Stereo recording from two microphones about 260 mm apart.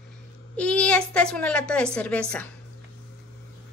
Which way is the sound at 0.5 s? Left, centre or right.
Centre.